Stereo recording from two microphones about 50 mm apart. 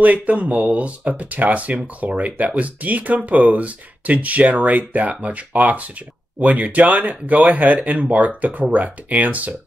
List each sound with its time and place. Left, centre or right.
0.0 s speech: right